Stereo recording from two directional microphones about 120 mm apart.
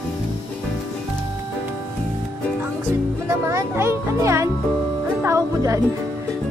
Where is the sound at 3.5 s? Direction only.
20° right (ahead or behind).